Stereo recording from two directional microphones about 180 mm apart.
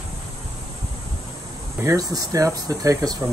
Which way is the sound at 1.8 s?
20° right (ahead or behind).